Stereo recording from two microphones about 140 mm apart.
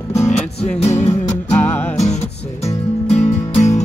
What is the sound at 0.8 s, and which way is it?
Music, 55° left (ahead or behind).